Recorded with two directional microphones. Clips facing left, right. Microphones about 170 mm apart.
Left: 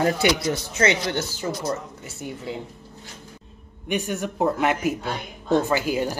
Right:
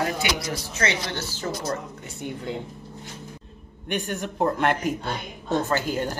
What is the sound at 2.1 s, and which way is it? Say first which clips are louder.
Speech: right 1 dB; 5° left (ahead or behind).